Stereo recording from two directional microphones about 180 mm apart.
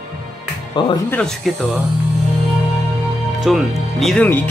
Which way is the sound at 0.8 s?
25° left (ahead or behind).